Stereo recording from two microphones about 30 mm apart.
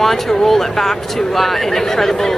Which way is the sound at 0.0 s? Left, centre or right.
Centre.